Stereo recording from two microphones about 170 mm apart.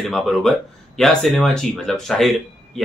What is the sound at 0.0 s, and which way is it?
Speech, centre (ahead or behind).